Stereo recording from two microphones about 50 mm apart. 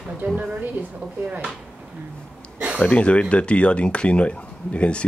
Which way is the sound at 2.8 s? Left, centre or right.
Left.